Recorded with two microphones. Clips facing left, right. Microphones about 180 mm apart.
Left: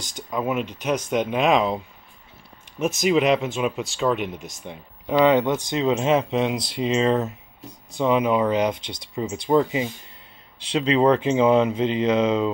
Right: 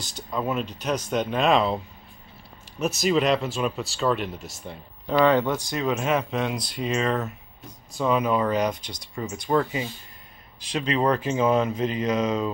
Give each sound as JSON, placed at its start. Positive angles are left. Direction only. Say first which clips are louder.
{"t": 0.1, "sound": "speech", "louder": "left 2 dB", "side_deg": 10}
{"t": 3.0, "sound": "speech", "louder": "left 3 dB", "side_deg": 15}